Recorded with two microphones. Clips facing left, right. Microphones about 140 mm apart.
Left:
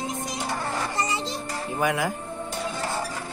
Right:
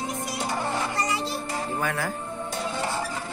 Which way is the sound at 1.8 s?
15° left (ahead or behind).